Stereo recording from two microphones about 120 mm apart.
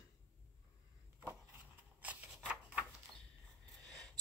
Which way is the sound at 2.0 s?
10° right (ahead or behind).